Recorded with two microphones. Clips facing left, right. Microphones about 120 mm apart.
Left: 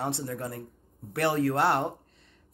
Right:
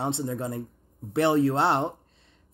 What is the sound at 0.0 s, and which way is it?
Speech, 20° right (ahead or behind).